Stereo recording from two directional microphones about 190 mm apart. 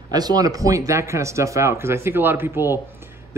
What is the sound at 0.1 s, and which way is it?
Speech, 20° right (ahead or behind).